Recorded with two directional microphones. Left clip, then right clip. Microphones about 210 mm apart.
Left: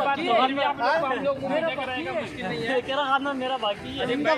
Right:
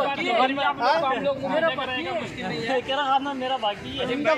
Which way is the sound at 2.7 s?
15° left (ahead or behind).